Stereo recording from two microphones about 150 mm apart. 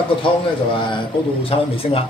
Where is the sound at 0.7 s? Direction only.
35° left (ahead or behind).